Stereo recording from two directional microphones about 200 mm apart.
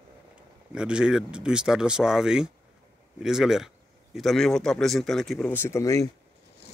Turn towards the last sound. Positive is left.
turn(degrees=15)  # may be behind; listen again after turning